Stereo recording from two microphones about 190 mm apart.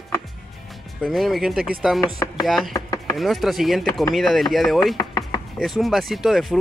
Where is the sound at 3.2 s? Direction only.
Centre (ahead or behind).